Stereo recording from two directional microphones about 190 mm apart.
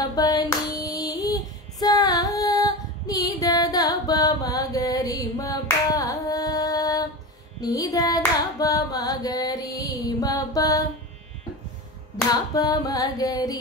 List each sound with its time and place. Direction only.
0.1 s female singing: 20° left (ahead or behind)
7.6 s carnatic music: 20° left (ahead or behind)
12.5 s music: 20° left (ahead or behind)